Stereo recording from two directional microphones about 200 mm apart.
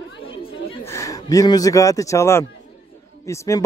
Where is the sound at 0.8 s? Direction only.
15° left (ahead or behind).